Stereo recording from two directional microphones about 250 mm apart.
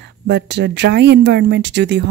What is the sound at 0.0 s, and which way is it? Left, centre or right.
Speech, right.